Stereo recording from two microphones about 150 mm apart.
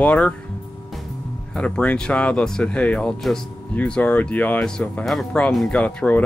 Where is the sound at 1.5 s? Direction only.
10° left (ahead or behind).